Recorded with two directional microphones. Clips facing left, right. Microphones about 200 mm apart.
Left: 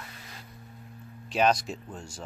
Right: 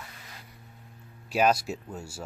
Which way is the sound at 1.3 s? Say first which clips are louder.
Right 1 dB; 5° right (ahead or behind).